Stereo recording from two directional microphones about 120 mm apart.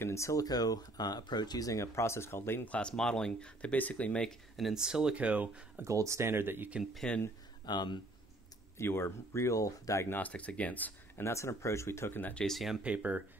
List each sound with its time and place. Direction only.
0.0 s speech: 25° left (ahead or behind); by 5.9 s 10° right (ahead or behind)
5.9 s speech: 25° right (ahead or behind)
6.8 s speech: centre (ahead or behind)
7.6 s speech: 35° left (ahead or behind)
8.7 s speech: 20° left (ahead or behind)
12.4 s speech: centre (ahead or behind)